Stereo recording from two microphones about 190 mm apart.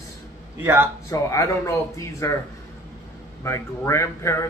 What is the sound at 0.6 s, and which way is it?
Speech, 10° right (ahead or behind).